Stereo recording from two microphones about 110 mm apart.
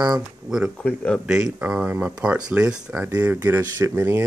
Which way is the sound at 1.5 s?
10° right (ahead or behind).